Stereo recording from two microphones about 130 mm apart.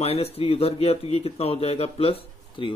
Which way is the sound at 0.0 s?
50° left (ahead or behind).